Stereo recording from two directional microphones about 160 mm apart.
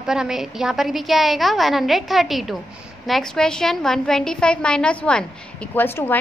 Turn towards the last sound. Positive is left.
turn(degrees=15)  # may be behind; listen again after turning